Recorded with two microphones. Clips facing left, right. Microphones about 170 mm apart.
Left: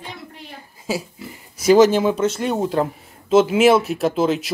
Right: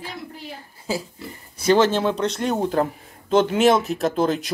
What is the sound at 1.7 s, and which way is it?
Speech, 10° left (ahead or behind).